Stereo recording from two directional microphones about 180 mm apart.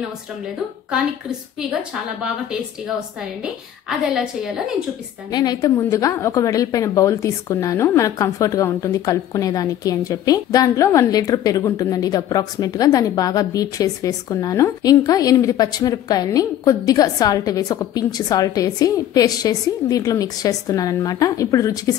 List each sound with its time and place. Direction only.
1.6 s a woman's voice: 5° right (ahead or behind)
4.0 s a woman's voice: 5° right (ahead or behind)
5.3 s a woman's voice: 20° left (ahead or behind)